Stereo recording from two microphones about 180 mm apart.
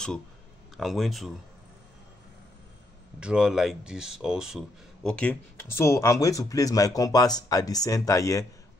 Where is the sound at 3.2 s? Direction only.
5° right (ahead or behind).